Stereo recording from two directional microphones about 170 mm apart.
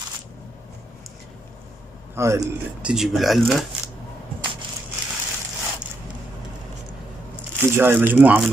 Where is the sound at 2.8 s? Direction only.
5° right (ahead or behind).